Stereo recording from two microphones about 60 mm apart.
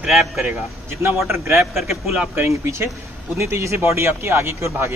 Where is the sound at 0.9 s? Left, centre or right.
Right.